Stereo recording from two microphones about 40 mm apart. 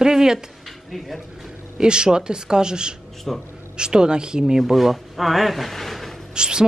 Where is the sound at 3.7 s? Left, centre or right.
Centre.